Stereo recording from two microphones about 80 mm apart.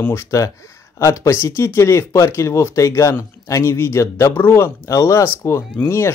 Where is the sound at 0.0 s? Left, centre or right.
Left.